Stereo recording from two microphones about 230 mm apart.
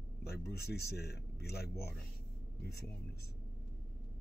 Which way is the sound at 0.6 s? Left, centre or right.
Left.